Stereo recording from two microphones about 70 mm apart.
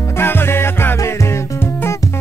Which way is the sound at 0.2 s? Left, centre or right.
Left.